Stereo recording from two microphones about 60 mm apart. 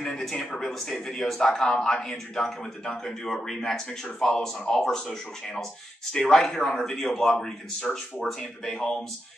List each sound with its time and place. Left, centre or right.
0.0 s speech: centre